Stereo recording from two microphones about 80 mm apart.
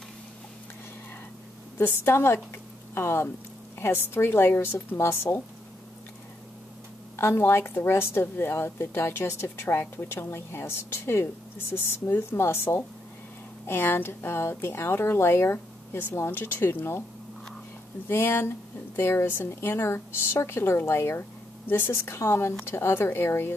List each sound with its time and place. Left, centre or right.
1.8 s a woman's voice: left
7.2 s a woman's voice: left
18.0 s a woman's voice: left